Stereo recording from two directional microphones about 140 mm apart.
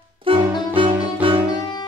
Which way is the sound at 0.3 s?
40° right (ahead or behind).